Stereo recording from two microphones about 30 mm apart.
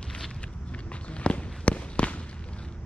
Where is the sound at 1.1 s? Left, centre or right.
Left.